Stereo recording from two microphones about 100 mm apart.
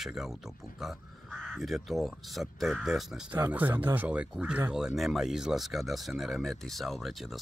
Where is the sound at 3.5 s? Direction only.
20° right (ahead or behind); by 7.4 s centre (ahead or behind).